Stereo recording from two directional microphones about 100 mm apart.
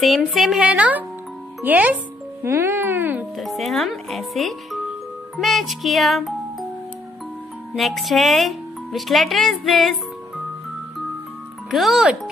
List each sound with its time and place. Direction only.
0.0 s a woman's voice: centre (ahead or behind); by 3.3 s 20° right (ahead or behind)
3.3 s speech: centre (ahead or behind)
7.7 s speech: centre (ahead or behind)
11.7 s speech: 5° right (ahead or behind)